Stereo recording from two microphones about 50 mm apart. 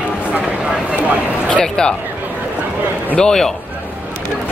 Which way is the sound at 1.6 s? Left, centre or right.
Centre.